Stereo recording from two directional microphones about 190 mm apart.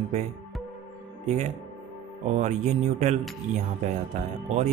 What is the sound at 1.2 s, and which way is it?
Speech, 35° right (ahead or behind).